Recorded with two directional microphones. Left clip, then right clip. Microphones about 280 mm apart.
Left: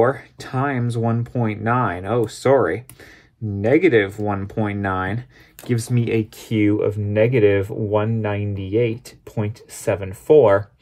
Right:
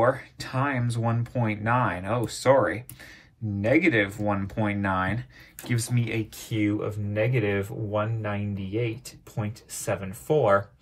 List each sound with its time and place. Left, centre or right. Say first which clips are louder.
0.0 s speech: left 5 dB; left